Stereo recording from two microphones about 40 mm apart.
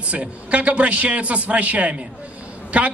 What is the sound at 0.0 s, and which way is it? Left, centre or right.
A man's voice, right.